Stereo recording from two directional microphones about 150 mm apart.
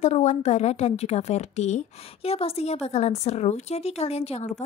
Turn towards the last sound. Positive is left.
turn(degrees=50)  # may be behind; listen again after turning